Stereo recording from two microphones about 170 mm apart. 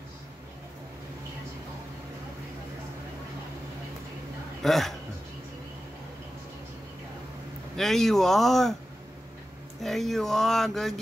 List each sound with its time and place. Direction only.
4.6 s speech: centre (ahead or behind)
7.7 s speech: centre (ahead or behind)
9.8 s speech: centre (ahead or behind)